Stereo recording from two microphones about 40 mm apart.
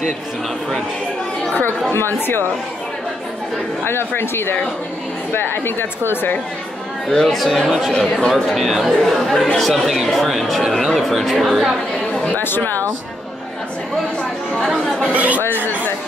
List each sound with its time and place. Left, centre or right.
2.0 s speech: left
4.1 s speech: left
7.1 s a man's voice: centre
12.4 s speech: left
15.1 s speech: right